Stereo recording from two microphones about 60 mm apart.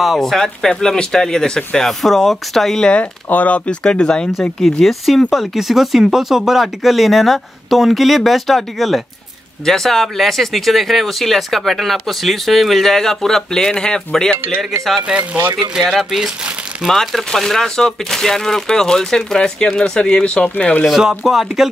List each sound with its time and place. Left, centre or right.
0.0 s speech: centre
2.9 s speech: left
4.3 s speech: centre
15.8 s speech: centre; by 20.8 s left
20.8 s speech: centre